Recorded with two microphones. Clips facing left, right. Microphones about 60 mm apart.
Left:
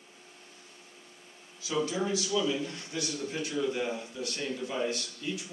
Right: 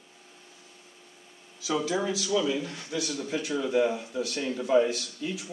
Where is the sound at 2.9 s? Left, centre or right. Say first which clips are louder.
Right 4 dB; right.